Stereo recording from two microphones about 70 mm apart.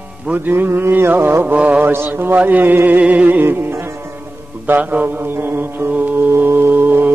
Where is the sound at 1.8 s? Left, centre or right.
Right.